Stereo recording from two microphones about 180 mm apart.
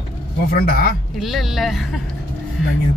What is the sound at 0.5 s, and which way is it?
Speech, 55° left (ahead or behind).